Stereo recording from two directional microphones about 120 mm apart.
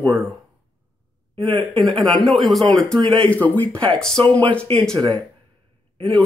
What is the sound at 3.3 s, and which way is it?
Speech, 15° left (ahead or behind).